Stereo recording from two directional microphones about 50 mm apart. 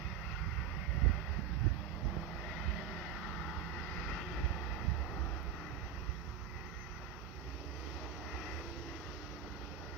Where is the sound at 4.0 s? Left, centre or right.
Centre.